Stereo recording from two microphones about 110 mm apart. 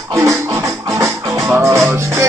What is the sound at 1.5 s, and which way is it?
Speech, 25° right (ahead or behind).